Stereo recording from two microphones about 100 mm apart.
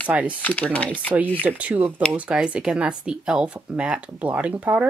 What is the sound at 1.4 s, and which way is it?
Speech, 15° right (ahead or behind).